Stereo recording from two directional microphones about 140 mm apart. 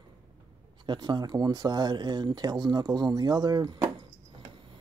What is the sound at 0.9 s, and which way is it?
Speech, 30° right (ahead or behind).